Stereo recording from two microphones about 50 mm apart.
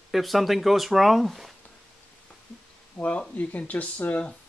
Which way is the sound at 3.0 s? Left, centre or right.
Left.